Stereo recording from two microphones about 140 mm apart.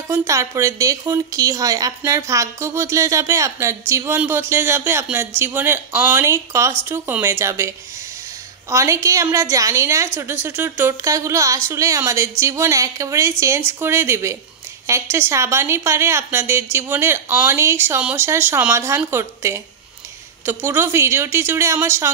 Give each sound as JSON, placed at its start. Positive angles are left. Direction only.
{"t": 0.3, "sound": "a woman's voice", "side_deg": -20}